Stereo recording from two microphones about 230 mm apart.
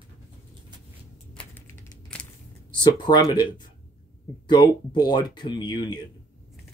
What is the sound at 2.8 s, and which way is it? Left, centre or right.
Speech, centre.